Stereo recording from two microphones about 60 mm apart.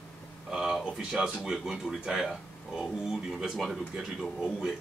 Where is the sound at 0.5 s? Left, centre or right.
Centre.